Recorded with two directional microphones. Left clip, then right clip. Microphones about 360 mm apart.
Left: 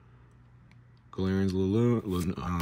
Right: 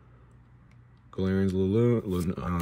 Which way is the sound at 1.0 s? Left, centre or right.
Centre.